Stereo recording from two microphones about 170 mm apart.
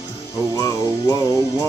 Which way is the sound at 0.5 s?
20° left (ahead or behind).